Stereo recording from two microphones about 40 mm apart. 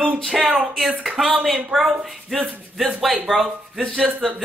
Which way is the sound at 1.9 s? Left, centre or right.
Right.